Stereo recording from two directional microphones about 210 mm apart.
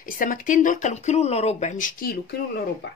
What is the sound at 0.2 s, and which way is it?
A woman's voice, 40° left (ahead or behind).